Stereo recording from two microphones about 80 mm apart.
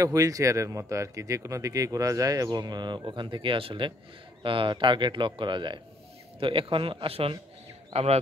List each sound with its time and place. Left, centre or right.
0.0 s speech: right
6.4 s speech: right